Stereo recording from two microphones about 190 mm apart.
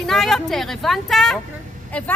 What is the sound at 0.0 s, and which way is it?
A woman's voice, centre (ahead or behind).